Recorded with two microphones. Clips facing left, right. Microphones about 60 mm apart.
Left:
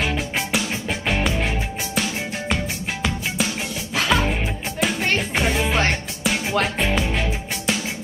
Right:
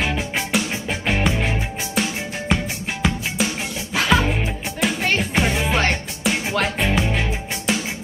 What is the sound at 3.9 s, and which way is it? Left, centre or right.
Music, centre.